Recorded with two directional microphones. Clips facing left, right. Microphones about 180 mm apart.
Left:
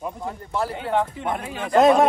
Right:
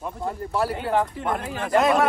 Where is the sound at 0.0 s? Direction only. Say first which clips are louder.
Right 1 dB; centre (ahead or behind).